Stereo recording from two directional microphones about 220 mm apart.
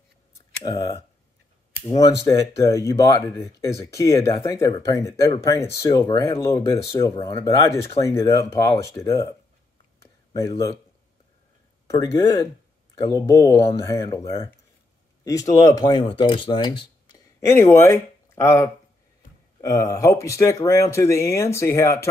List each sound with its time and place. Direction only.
0.7 s speech: 15° left (ahead or behind)
11.9 s speech: 15° left (ahead or behind)
17.5 s speech: 10° left (ahead or behind)